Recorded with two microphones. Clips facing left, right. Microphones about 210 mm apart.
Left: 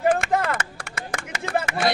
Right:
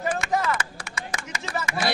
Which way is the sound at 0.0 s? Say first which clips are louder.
Left 4 dB; 55° left (ahead or behind).